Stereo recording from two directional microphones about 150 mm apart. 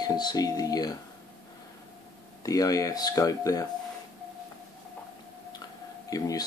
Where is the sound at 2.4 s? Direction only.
25° left (ahead or behind).